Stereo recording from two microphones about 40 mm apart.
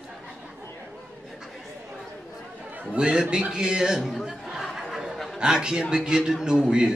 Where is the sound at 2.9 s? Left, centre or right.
Right.